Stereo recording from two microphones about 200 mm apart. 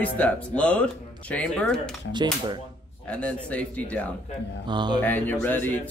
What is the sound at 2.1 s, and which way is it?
Dishes, 20° right (ahead or behind).